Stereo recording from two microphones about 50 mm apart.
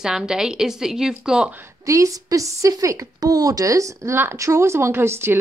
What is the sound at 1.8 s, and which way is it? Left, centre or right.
A woman's voice, right.